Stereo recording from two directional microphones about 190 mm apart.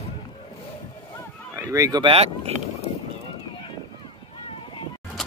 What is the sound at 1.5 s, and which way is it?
Speech, 15° right (ahead or behind).